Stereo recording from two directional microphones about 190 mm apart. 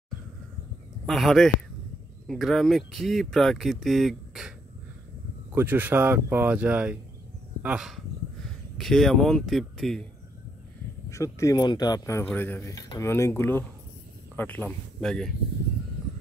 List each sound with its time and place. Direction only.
1.0 s speech: centre (ahead or behind)
11.1 s speech: 15° left (ahead or behind)